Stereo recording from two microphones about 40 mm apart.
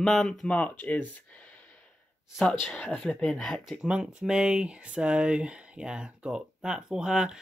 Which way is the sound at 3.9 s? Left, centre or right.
Right.